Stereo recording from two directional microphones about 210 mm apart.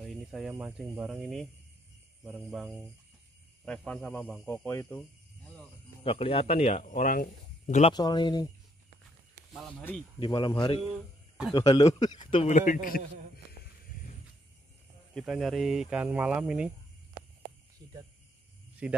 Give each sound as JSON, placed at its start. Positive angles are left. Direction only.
{"t": 0.0, "sound": "a man's voice", "side_deg": 0}
{"t": 6.0, "sound": "a man's voice", "side_deg": 25}
{"t": 7.9, "sound": "a man's voice", "side_deg": 20}
{"t": 9.5, "sound": "speech", "side_deg": 0}
{"t": 10.2, "sound": "a man's voice", "side_deg": 20}
{"t": 15.1, "sound": "speech", "side_deg": 0}
{"t": 18.8, "sound": "speech", "side_deg": -5}